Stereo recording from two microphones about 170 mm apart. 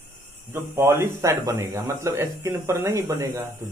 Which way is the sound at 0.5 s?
15° right (ahead or behind).